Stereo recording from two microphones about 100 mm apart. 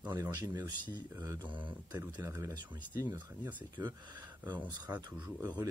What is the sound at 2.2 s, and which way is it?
Speech, 35° right (ahead or behind).